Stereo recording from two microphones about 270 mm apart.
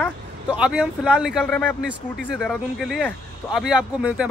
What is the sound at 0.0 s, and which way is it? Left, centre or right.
Speech, centre.